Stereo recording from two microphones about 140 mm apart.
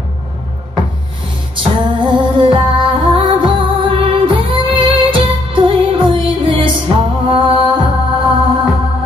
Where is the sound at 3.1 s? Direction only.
40° right (ahead or behind).